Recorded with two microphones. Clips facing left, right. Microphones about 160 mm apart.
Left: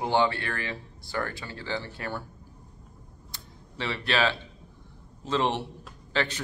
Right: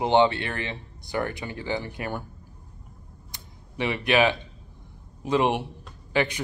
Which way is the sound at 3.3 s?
15° right (ahead or behind).